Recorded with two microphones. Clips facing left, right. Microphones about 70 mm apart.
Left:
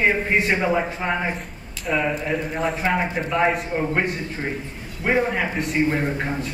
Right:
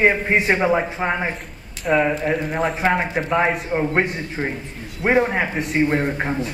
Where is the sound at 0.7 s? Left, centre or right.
Centre.